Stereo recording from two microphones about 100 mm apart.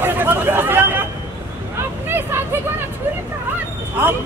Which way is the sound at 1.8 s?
20° right (ahead or behind).